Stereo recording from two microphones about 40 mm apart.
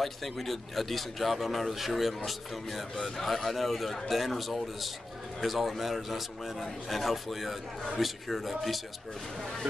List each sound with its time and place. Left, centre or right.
0.0 s a man's voice: centre